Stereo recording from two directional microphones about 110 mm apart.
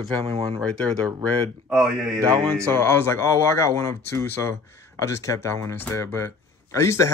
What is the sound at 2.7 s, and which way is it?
Speech, 20° left (ahead or behind).